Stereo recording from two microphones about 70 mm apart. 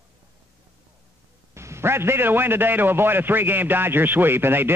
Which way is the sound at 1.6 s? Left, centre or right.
Right.